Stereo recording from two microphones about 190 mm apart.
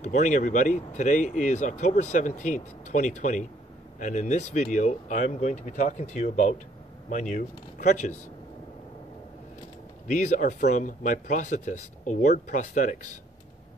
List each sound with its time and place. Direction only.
0.0 s speech: 40° left (ahead or behind)
10.1 s speech: 40° left (ahead or behind)